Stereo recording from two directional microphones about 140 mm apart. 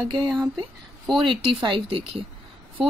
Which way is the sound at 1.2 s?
40° right (ahead or behind).